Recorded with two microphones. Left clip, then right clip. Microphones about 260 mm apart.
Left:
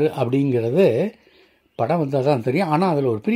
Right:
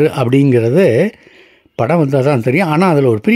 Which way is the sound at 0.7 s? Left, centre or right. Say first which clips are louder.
Right 4 dB; right.